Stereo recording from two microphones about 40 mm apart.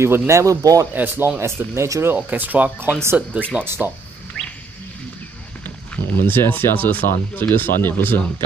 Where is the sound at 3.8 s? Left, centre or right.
Right.